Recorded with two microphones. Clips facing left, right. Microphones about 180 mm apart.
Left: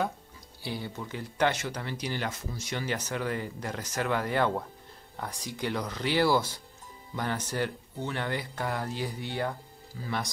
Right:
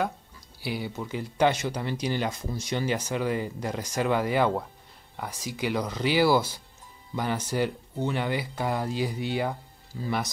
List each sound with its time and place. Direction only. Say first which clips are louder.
0.7 s speech: right 4 dB; 10° right (ahead or behind)